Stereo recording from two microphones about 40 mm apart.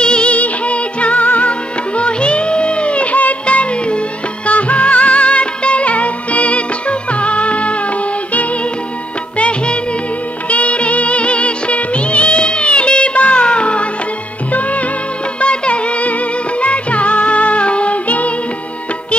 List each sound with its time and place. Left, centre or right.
0.0 s music: left
2.0 s music: left
9.4 s music of bollywood: left
10.5 s music: left
15.4 s music of bollywood: left
16.6 s music: left